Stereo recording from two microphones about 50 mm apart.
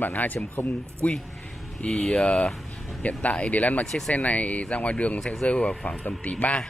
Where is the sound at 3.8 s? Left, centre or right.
Centre.